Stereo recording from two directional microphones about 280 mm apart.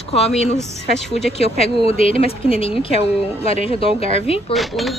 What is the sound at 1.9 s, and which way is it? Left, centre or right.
Speech, left.